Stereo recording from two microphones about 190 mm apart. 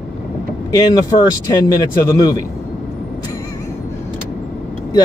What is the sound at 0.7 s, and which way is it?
Speech, 20° left (ahead or behind).